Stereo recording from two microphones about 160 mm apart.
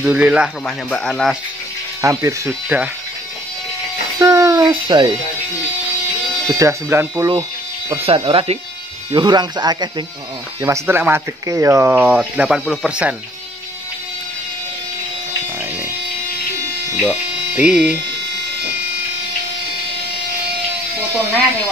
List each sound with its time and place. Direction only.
0.0 s speech: 5° right (ahead or behind)
0.8 s speech: 5° left (ahead or behind)
2.0 s speech: 20° right (ahead or behind)
4.2 s a sound: 20° right (ahead or behind)
6.4 s speech: 20° right (ahead or behind)
8.0 s speech: 35° right (ahead or behind)
10.6 s speech: 15° right (ahead or behind)
12.0 s speech: 10° right (ahead or behind)
16.9 s a sound: 5° right (ahead or behind)